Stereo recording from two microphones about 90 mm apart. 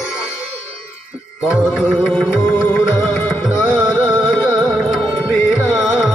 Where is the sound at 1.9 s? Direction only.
10° left (ahead or behind).